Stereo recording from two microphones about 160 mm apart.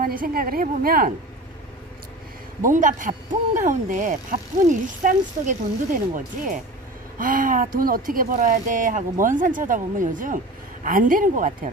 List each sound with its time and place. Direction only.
0.0 s a man's voice: 65° right (ahead or behind)
2.6 s a man's voice: 55° right (ahead or behind)